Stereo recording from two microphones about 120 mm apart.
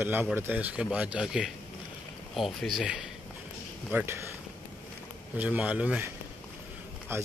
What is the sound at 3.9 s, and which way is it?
Speech, 20° right (ahead or behind).